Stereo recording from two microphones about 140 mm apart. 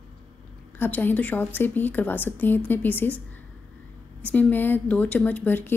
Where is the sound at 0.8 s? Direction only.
15° left (ahead or behind).